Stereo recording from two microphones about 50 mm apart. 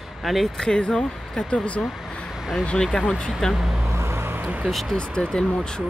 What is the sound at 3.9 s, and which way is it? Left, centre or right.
Vehicle, right.